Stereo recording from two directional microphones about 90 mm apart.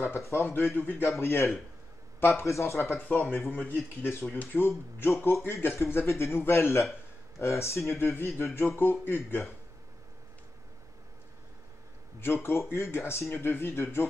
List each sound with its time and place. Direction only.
0.0 s speech: 25° left (ahead or behind)
12.4 s speech: 25° left (ahead or behind)